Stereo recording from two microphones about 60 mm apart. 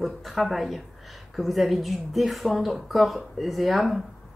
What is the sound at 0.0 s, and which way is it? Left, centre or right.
A woman's voice, centre.